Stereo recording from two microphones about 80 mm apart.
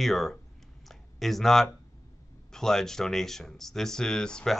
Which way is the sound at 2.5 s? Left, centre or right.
Centre.